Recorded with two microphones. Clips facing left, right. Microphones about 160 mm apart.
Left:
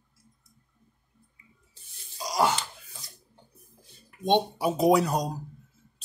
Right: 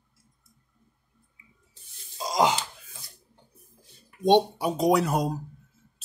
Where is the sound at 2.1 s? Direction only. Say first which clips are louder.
Right 2 dB; 20° right (ahead or behind).